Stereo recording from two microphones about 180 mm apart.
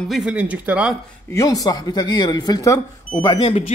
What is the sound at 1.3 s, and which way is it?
Speech, 20° left (ahead or behind).